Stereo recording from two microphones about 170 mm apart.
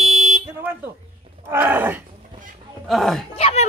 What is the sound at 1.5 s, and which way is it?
Groan, 10° right (ahead or behind).